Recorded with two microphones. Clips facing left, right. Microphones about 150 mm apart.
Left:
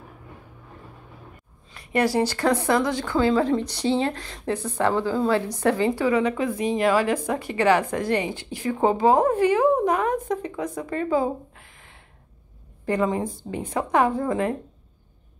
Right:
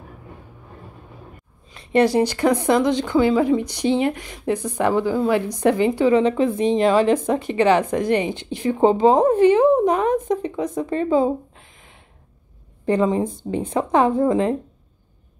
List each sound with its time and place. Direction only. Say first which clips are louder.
1.7 s a woman's voice: right 5 dB; 25° right (ahead or behind)